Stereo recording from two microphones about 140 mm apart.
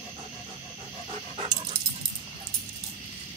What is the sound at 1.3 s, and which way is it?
Dog, 35° right (ahead or behind).